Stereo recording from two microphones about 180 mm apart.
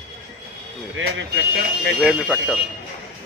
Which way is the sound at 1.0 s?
80° right.